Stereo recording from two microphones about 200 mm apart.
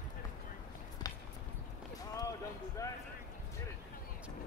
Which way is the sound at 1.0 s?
20° left (ahead or behind).